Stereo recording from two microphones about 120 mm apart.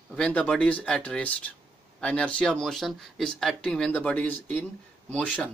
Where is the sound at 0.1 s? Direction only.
10° left (ahead or behind).